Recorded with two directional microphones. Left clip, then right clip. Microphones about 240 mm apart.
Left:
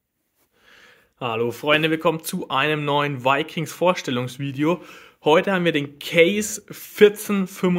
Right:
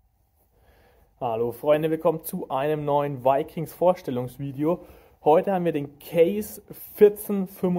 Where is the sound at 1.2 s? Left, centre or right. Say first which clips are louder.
Left 2 dB; left.